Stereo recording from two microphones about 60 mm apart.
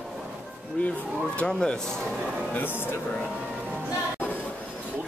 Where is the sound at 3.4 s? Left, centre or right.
Right.